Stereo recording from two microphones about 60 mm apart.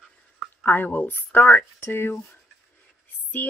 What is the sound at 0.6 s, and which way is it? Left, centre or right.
Speech, left.